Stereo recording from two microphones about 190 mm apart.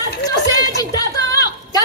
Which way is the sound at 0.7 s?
20° left (ahead or behind).